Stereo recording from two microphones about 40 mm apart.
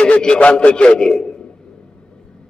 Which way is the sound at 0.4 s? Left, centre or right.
Left.